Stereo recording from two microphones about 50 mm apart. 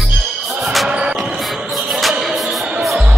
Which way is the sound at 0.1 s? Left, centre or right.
Centre.